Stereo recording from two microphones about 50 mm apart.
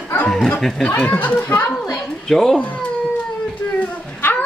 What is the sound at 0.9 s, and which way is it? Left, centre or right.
Speech, left.